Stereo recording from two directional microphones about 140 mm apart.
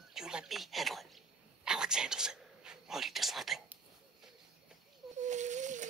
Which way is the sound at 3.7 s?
5° right (ahead or behind).